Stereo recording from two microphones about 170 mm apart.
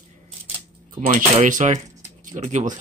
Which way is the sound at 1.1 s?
45° right (ahead or behind).